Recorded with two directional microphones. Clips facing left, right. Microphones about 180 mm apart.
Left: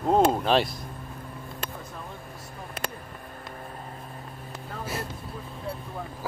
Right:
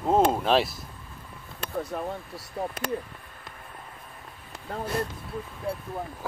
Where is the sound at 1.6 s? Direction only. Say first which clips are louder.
Right 12 dB; 65° right (ahead or behind).